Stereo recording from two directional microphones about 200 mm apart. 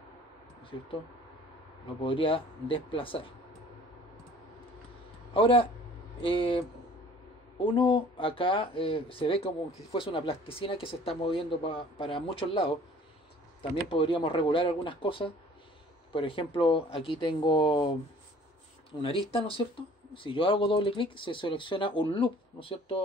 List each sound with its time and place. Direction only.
2.0 s speech: 25° left (ahead or behind)
5.3 s speech: 25° left (ahead or behind)